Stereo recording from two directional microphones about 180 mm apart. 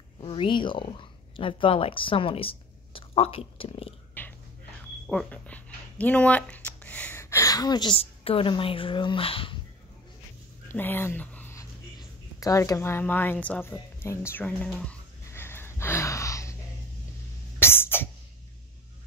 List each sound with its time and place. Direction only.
0.2 s speech: 30° left (ahead or behind)
4.2 s whispering: 10° left (ahead or behind)
5.0 s speech: 5° left (ahead or behind); by 9.6 s 30° left (ahead or behind)
10.7 s a sound: 10° left (ahead or behind)
17.6 s cough: 10° left (ahead or behind)